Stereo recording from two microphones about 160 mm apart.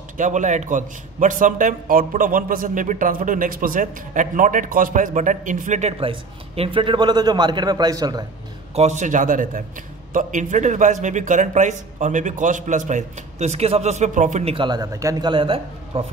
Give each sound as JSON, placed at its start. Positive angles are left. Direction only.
{"t": 0.2, "sound": "a man's voice", "side_deg": -50}
{"t": 8.7, "sound": "a man's voice", "side_deg": -45}
{"t": 14.5, "sound": "speech", "side_deg": -30}